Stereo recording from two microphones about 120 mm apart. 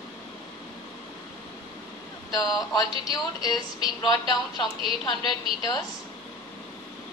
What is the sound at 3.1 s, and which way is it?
Speech, 35° left (ahead or behind).